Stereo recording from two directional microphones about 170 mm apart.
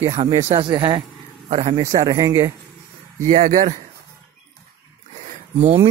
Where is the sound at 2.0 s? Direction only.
20° right (ahead or behind).